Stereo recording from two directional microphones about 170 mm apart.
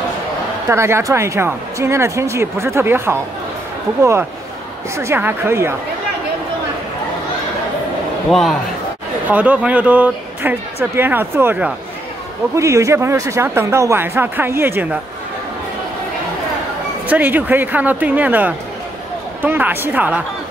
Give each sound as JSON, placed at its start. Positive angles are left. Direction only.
{"t": 0.7, "sound": "a woman's voice", "side_deg": -15}
{"t": 8.3, "sound": "a man's voice", "side_deg": 0}
{"t": 17.1, "sound": "a woman's voice", "side_deg": -10}